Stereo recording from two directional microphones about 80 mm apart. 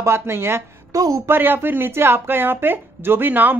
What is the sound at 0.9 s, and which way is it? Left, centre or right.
Speech, right.